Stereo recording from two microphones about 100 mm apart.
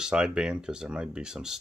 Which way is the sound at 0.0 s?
5° right (ahead or behind).